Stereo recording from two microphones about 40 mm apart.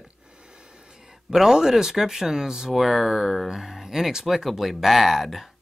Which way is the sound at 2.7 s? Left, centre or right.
Centre.